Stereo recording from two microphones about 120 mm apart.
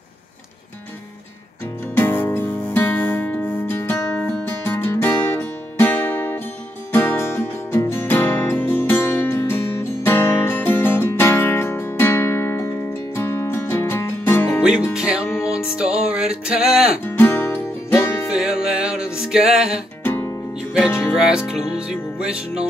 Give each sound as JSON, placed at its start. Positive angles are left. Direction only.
{"t": 2.0, "sound": "music", "side_deg": 20}
{"t": 14.6, "sound": "music", "side_deg": -5}
{"t": 17.0, "sound": "music", "side_deg": 15}
{"t": 18.3, "sound": "music", "side_deg": -5}
{"t": 20.0, "sound": "music", "side_deg": 20}
{"t": 21.0, "sound": "music", "side_deg": -5}